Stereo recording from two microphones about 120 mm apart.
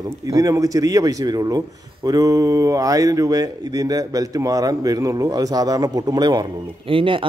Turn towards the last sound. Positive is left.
turn(degrees=-45)  # may be behind; listen again after turning